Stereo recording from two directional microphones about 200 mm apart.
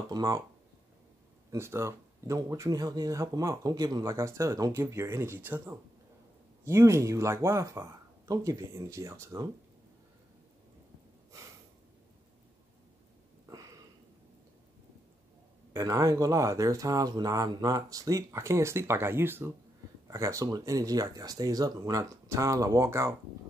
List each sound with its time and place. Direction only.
0.1 s speech: 15° right (ahead or behind)
1.5 s speech: 15° right (ahead or behind)
13.5 s sniff: 15° right (ahead or behind)
15.7 s speech: 15° right (ahead or behind)